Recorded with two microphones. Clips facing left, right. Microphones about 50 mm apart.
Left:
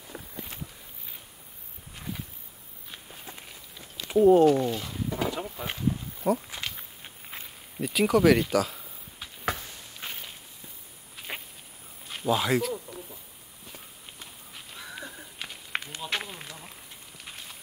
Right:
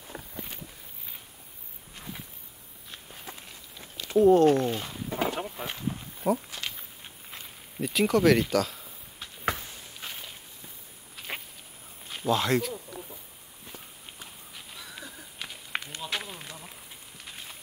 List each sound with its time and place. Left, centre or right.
0.1 s walk: right
4.2 s speech: centre
4.5 s a sound: right
6.2 s speech: centre
6.7 s walk: centre
7.8 s speech: centre
11.1 s a sound: centre
12.1 s speech: centre
15.3 s run: centre
16.4 s a sound: centre